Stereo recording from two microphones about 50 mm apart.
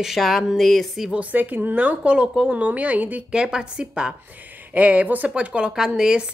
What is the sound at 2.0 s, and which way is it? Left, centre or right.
A woman's voice, right.